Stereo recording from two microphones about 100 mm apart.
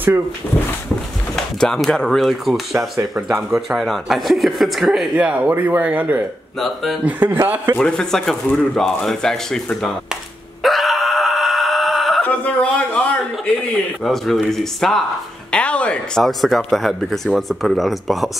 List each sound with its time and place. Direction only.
1.3 s speech: 5° left (ahead or behind)
5.2 s speech: 15° right (ahead or behind)
6.6 s speech: centre (ahead or behind)
7.1 s a man's voice: 20° right (ahead or behind)
7.8 s speech: 5° left (ahead or behind)
10.6 s wail: centre (ahead or behind)
12.2 s a sound: 10° left (ahead or behind)
14.0 s speech: centre (ahead or behind)
15.5 s a sound: 10° left (ahead or behind)
16.2 s speech: centre (ahead or behind)